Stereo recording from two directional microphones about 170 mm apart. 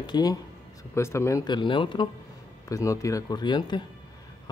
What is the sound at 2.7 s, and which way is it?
Speech, 20° left (ahead or behind).